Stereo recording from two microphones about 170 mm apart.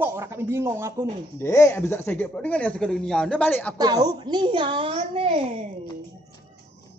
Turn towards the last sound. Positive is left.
turn(degrees=-35)  # may be behind; listen again after turning